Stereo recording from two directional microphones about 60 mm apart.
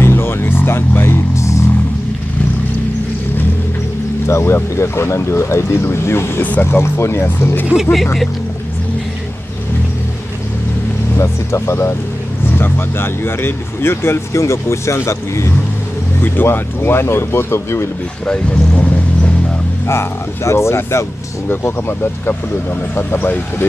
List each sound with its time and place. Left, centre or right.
0.0 s vehicle: left
4.3 s speech: left
7.7 s speech: centre
11.1 s speech: left
12.5 s speech: left
16.2 s speech: left
18.2 s speech: centre
19.9 s speech: left
21.5 s speech: left